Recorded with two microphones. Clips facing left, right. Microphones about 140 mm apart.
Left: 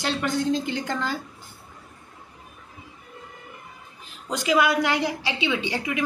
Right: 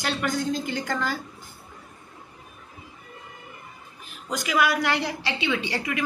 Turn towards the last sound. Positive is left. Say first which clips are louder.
# left 1 dB
turn(degrees=15)  # may be behind; listen again after turning